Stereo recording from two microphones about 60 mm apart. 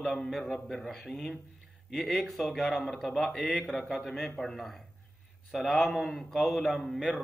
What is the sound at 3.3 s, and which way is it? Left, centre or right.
Speech, centre.